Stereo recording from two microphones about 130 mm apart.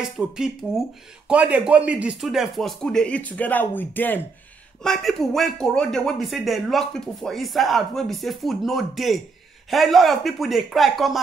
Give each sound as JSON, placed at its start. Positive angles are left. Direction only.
{"t": 0.0, "sound": "speech", "side_deg": -5}
{"t": 4.8, "sound": "speech", "side_deg": 5}